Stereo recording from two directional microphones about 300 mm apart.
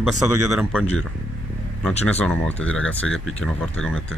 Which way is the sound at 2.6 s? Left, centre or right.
Left.